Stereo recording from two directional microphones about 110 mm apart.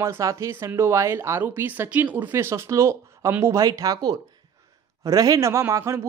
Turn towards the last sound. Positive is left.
turn(degrees=-25)  # may be behind; listen again after turning